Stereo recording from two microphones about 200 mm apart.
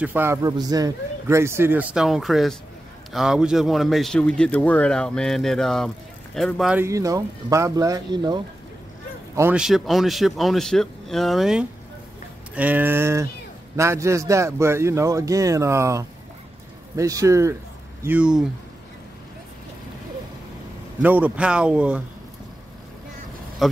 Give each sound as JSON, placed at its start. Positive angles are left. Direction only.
{"t": 0.0, "sound": "a man's voice", "side_deg": -10}
{"t": 9.3, "sound": "a man's voice", "side_deg": -10}
{"t": 21.0, "sound": "speech", "side_deg": -10}
{"t": 23.6, "sound": "vehicle", "side_deg": 0}